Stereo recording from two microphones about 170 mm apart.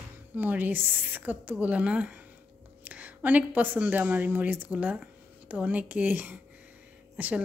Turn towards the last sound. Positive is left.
turn(degrees=-10)  # may be behind; listen again after turning